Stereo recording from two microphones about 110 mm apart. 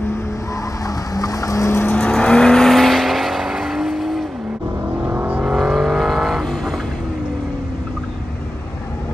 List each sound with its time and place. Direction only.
0.8 s vehicle: 30° left (ahead or behind); by 4.3 s centre (ahead or behind)
5.0 s vehicle: 15° right (ahead or behind)
5.5 s vehicle: centre (ahead or behind)